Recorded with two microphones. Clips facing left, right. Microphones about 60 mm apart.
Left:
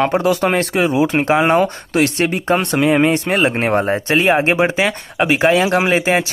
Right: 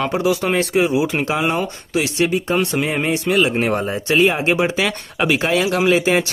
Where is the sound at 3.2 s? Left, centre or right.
Left.